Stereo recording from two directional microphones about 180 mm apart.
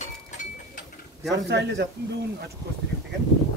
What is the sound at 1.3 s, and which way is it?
Speech, 70° right (ahead or behind).